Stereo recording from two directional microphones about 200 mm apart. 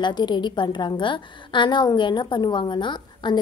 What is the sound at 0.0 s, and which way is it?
A woman's voice, 20° left (ahead or behind).